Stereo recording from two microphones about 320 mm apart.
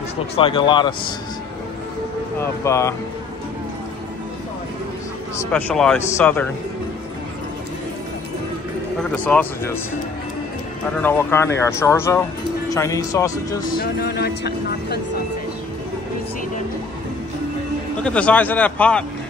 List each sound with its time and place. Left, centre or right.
0.4 s speech: centre
2.3 s speech: centre
5.4 s speech: centre
9.1 s speech: centre
11.0 s speech: centre
13.7 s speech: left
18.0 s speech: centre